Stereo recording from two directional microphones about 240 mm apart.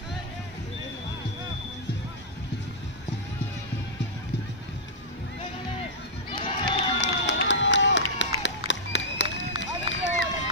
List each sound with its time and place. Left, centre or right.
6.3 s crowd: centre
7.0 s run: left
8.4 s a sound: left
9.6 s run: left